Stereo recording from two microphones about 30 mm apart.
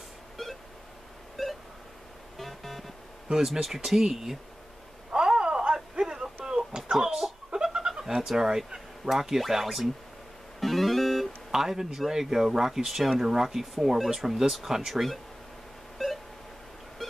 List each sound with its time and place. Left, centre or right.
0.4 s beep: centre
1.4 s pulse: centre
2.3 s music: centre
3.3 s speech: centre
5.1 s a sound: right
6.9 s chicken: right
7.5 s goat: centre
8.3 s speech: centre
9.5 s speech: centre
10.6 s keyboard: centre
11.5 s speech: centre
16.0 s pulse: centre